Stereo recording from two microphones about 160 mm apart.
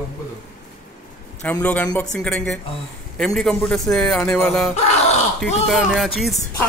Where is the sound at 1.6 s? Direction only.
10° left (ahead or behind).